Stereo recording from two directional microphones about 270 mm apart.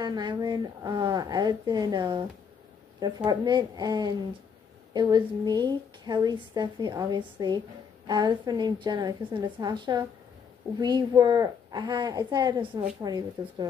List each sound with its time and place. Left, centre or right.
0.0 s a woman's voice: centre
3.3 s a woman's voice: centre